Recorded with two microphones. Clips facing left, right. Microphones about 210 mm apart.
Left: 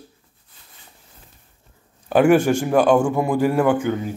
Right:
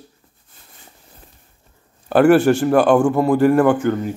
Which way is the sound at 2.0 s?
10° left (ahead or behind).